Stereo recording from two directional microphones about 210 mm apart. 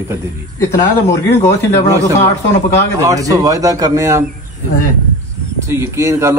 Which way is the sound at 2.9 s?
15° right (ahead or behind).